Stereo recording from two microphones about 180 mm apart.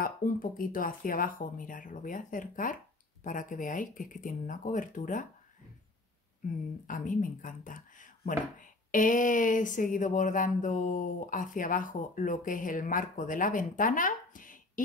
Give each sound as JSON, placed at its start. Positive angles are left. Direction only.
{"t": 0.0, "sound": "speech", "side_deg": 50}
{"t": 6.9, "sound": "speech", "side_deg": 45}